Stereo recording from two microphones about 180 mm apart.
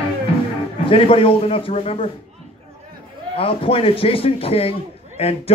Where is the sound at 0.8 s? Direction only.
30° left (ahead or behind).